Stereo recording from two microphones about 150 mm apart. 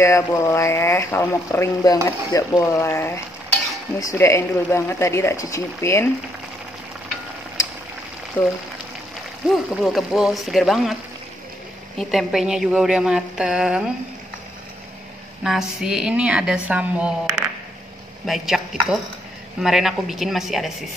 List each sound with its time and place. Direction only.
0.0 s speech: 20° left (ahead or behind)
8.4 s speech: 15° left (ahead or behind)
9.4 s a woman's voice: 5° right (ahead or behind)
12.0 s a woman's voice: centre (ahead or behind)
15.4 s a woman's voice: 5° right (ahead or behind)
18.2 s a woman's voice: centre (ahead or behind)